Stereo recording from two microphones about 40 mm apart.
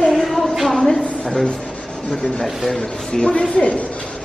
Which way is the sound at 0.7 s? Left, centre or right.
Centre.